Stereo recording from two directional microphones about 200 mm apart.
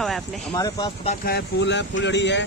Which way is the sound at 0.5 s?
20° left (ahead or behind).